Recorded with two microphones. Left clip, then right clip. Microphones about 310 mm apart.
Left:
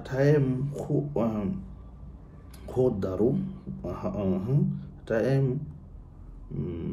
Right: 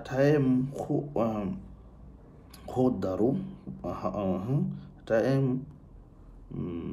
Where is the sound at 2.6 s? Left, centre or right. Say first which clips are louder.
Left 2 dB; centre.